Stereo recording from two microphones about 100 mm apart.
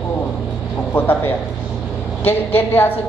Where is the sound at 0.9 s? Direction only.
20° left (ahead or behind).